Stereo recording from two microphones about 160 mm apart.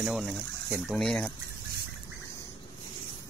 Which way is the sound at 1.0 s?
5° left (ahead or behind).